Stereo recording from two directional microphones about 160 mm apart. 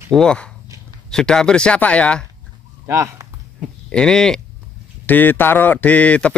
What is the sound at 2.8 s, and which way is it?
Speech, 15° right (ahead or behind).